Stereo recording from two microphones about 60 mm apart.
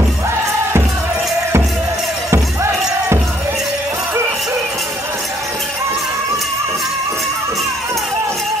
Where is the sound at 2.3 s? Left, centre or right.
Right.